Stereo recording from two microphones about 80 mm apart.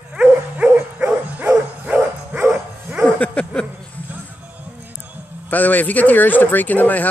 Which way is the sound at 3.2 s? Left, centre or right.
Centre.